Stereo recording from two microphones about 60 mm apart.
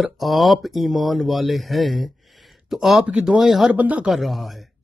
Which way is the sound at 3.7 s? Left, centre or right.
Right.